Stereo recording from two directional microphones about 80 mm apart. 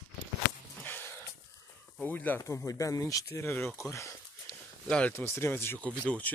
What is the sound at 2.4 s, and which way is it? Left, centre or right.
Speech, left.